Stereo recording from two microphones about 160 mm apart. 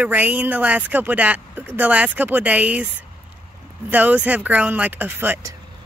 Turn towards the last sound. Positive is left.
turn(degrees=-10)  # may be behind; listen again after turning